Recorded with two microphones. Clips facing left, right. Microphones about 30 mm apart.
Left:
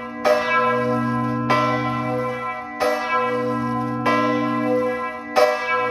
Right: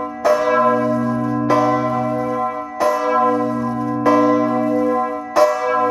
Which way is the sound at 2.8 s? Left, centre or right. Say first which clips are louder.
Right 5 dB; left.